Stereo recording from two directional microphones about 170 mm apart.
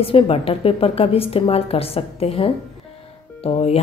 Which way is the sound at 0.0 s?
35° left (ahead or behind).